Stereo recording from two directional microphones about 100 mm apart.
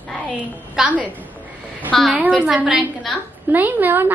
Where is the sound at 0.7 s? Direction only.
15° right (ahead or behind).